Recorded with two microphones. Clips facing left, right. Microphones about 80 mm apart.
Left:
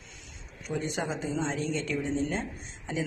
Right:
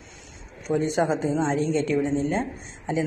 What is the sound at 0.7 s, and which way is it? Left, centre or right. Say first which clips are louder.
Speech: right 9 dB; right.